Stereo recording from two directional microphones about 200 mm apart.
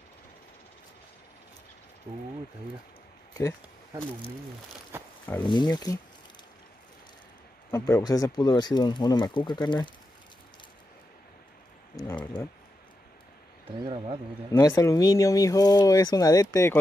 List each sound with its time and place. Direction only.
4.9 s wild animals: 10° right (ahead or behind)
5.4 s speech: 20° left (ahead or behind)
7.7 s speech: 15° left (ahead or behind)
12.0 s speech: 20° left (ahead or behind)
14.5 s speech: 15° left (ahead or behind)